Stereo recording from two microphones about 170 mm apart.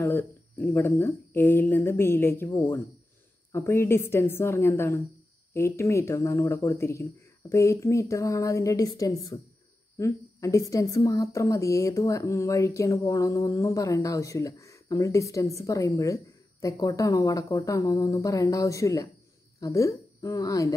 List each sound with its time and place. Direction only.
0.0 s a woman's voice: 15° left (ahead or behind)